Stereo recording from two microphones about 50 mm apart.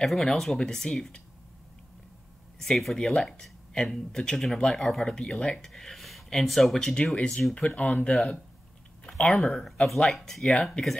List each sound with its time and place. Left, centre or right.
0.0 s speech: centre
2.6 s speech: centre
5.7 s speech: centre; by 7.5 s left
7.7 s speech: left
9.3 s speech: centre